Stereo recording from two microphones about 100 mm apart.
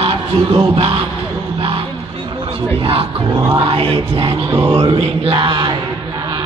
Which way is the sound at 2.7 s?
65° right (ahead or behind).